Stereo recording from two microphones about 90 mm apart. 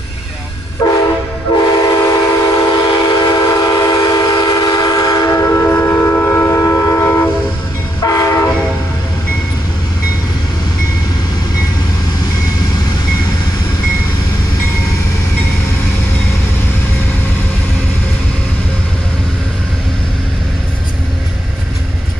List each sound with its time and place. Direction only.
1.5 s train: 45° left (ahead or behind)
2.0 s train: 35° left (ahead or behind)